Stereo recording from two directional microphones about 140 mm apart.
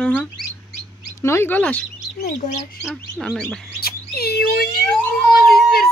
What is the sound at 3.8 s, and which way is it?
Speech, 90° left.